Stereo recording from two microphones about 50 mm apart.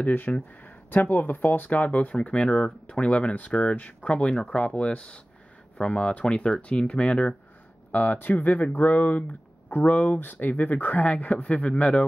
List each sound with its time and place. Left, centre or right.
0.0 s speech: left
2.2 s speech: left
4.4 s speech: centre
7.9 s speech: left